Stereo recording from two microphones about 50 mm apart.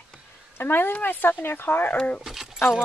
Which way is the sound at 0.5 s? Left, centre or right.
Left.